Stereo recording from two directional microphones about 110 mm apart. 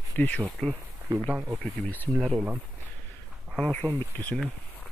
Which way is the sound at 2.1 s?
Centre (ahead or behind).